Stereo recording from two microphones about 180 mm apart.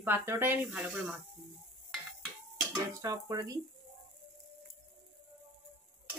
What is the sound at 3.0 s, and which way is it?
Dishes, 20° right (ahead or behind).